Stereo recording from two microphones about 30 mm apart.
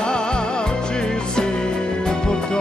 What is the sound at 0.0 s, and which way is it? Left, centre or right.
Music, left.